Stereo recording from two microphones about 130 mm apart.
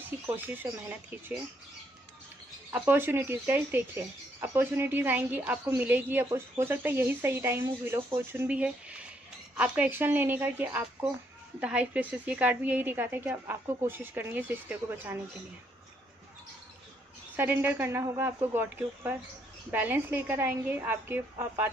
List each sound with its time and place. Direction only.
0.4 s a woman's voice: 15° right (ahead or behind)
2.7 s a woman's voice: 15° right (ahead or behind)
17.4 s a woman's voice: 15° right (ahead or behind)